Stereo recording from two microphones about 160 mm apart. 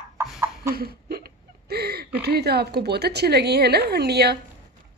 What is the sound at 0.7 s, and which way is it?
Hiccup, 75° right (ahead or behind).